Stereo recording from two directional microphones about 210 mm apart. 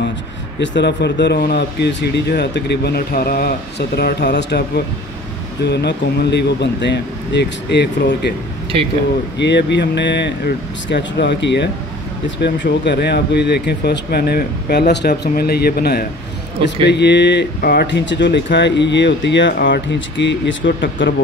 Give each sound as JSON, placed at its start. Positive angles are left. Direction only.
{"t": 0.6, "sound": "speech", "side_deg": 55}
{"t": 9.4, "sound": "speech", "side_deg": 55}
{"t": 19.6, "sound": "speech", "side_deg": 40}
{"t": 20.2, "sound": "speech", "side_deg": 60}